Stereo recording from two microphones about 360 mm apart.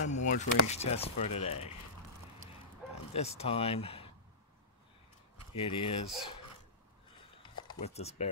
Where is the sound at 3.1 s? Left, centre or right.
Centre.